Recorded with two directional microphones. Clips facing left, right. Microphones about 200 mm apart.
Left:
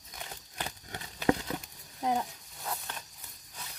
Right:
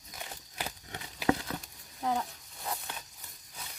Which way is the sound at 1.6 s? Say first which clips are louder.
Left 1 dB; 15° left (ahead or behind).